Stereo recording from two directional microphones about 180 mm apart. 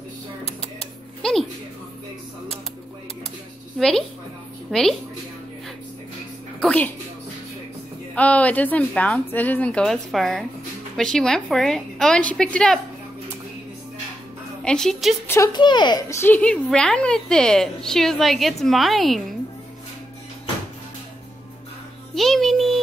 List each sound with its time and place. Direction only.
0.5 s a sound: 35° left (ahead or behind)
1.2 s a sound: 5° left (ahead or behind)
4.6 s a woman's voice: 5° left (ahead or behind)
6.6 s speech: 5° left (ahead or behind)
8.1 s a woman's voice: 10° left (ahead or behind)
14.6 s a woman's voice: 5° left (ahead or behind)
15.2 s a woman's voice: 15° left (ahead or behind); by 19.2 s centre (ahead or behind)
22.1 s music: centre (ahead or behind)